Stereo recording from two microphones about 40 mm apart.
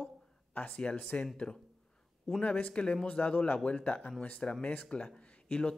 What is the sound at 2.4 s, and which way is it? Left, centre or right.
A man's voice, left.